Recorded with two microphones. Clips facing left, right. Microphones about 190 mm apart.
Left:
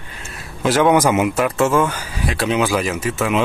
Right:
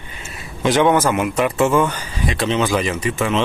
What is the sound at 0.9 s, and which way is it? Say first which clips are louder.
Speech: left 2 dB; 15° left (ahead or behind).